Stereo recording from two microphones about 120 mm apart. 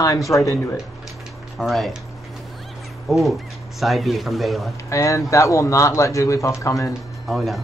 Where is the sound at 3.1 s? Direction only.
Centre (ahead or behind).